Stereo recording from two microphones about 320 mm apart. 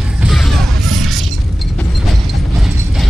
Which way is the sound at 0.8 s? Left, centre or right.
Right.